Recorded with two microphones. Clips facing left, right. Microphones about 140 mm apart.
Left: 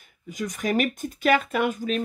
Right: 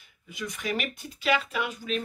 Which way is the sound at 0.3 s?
45° left (ahead or behind).